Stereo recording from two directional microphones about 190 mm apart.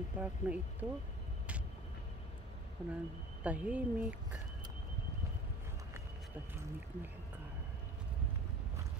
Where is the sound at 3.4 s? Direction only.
5° right (ahead or behind).